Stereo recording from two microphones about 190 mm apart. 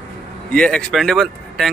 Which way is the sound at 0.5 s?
5° left (ahead or behind).